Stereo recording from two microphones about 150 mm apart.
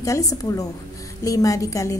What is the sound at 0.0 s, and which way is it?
A woman's voice, 20° left (ahead or behind).